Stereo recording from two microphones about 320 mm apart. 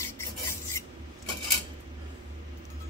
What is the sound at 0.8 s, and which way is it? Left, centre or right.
Filing, centre.